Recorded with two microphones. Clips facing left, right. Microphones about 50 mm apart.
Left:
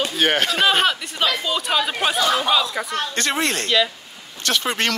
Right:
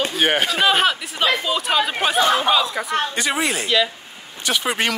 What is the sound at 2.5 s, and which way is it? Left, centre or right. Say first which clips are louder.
Speech: right 1 dB; centre.